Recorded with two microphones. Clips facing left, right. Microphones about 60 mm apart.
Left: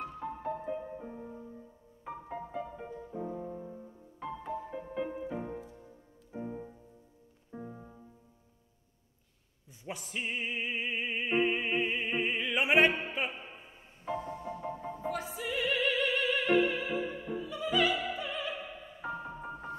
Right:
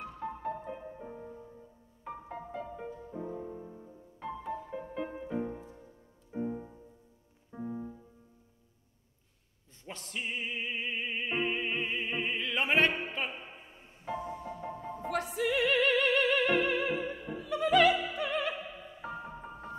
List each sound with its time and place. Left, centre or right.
0.0 s music: centre
9.8 s music: centre
14.0 s music: centre
15.3 s music: right
18.5 s music: centre